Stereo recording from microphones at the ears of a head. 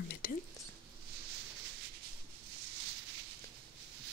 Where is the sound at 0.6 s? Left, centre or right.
Right.